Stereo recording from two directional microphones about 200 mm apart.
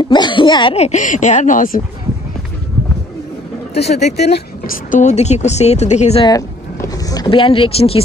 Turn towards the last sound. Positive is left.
turn(degrees=30)  # may be behind; listen again after turning